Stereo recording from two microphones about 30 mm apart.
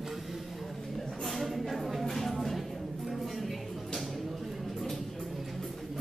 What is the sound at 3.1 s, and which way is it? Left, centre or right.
Music, centre.